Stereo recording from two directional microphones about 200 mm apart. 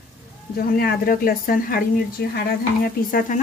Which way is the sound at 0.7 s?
45° left (ahead or behind).